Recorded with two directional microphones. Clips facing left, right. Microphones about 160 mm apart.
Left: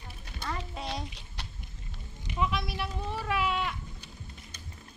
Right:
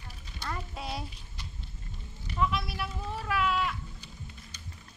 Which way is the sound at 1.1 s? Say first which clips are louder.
Left 2 dB; 75° left (ahead or behind).